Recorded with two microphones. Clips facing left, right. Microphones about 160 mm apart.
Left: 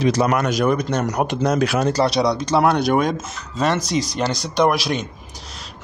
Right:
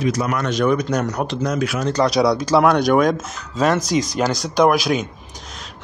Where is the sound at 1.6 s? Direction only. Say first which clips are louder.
Left 3 dB; 35° left (ahead or behind).